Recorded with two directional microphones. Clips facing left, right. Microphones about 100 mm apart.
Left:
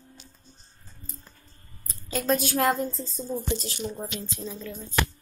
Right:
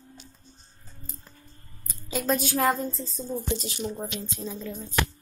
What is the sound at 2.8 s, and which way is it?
Speech, 20° right (ahead or behind).